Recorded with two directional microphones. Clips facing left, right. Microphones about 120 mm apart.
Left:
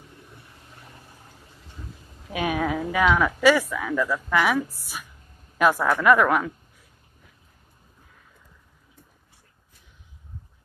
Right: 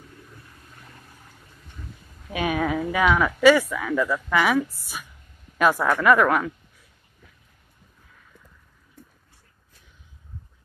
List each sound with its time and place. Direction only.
0.1 s vehicle: 20° left (ahead or behind)
2.2 s speech: 10° left (ahead or behind)